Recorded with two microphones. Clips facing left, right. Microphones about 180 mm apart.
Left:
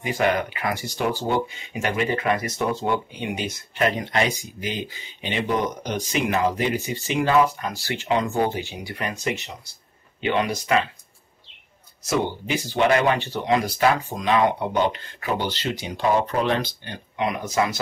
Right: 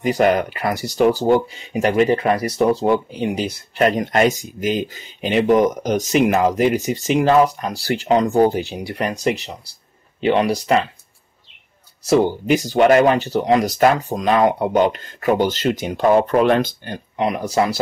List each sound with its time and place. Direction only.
0.0 s speech: 40° right (ahead or behind)
3.9 s speech: 45° right (ahead or behind)
12.0 s speech: 35° right (ahead or behind)
12.4 s speech: 45° right (ahead or behind)